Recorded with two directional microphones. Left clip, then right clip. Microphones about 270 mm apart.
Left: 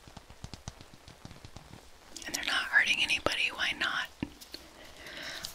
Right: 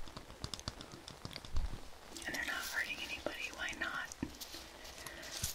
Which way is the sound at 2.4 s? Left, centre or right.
Left.